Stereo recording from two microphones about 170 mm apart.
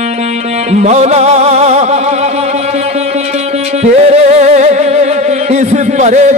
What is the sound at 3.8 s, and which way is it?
Music, 40° right (ahead or behind).